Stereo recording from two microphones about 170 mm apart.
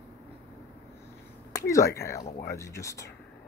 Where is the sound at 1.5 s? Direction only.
15° left (ahead or behind).